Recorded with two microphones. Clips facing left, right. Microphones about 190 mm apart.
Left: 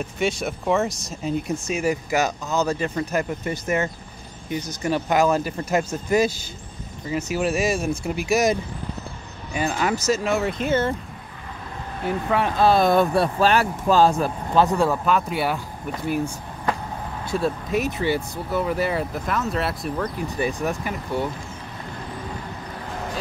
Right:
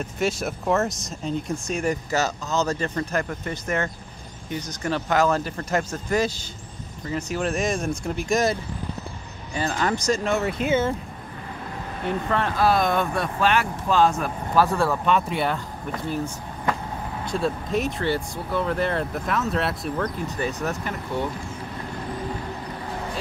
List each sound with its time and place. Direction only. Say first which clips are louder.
0.0 s speech: left 1 dB; centre (ahead or behind)
12.1 s speech: left 2 dB; 10° left (ahead or behind)
12.5 s speech: left 5 dB; 30° left (ahead or behind)
15.0 s speech: even; centre (ahead or behind)
17.3 s speech: left 2 dB; 5° left (ahead or behind)
20.3 s speech: left 5 dB; 10° left (ahead or behind)